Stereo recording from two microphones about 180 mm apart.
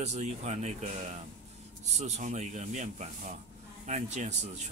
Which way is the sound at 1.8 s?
40° right (ahead or behind).